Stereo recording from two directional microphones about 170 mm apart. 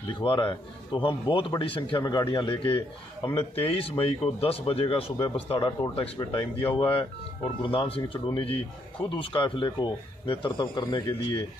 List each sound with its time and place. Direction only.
0.1 s a man's voice: 30° left (ahead or behind)